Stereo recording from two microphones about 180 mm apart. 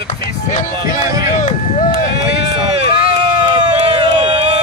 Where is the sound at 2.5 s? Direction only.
35° right (ahead or behind).